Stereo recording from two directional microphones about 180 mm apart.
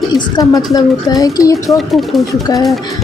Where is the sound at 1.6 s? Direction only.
Centre (ahead or behind).